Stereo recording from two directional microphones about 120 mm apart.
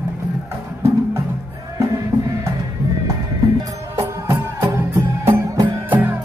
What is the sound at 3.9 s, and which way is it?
Music, 25° right (ahead or behind).